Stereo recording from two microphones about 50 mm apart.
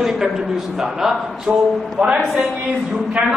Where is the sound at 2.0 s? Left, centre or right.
Centre.